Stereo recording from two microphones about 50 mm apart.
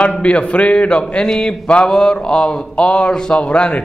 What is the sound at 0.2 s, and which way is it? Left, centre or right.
A man's voice, left.